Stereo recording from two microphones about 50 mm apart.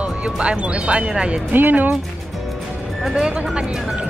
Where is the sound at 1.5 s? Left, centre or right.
Right.